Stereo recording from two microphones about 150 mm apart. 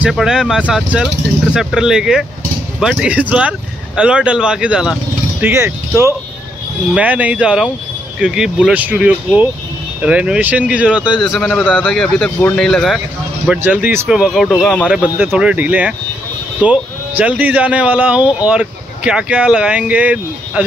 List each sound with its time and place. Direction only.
0.1 s speech: 5° right (ahead or behind)
5.4 s speech: 15° right (ahead or behind); by 13.0 s centre (ahead or behind)
13.5 s speech: 10° right (ahead or behind)
17.2 s speech: 10° right (ahead or behind)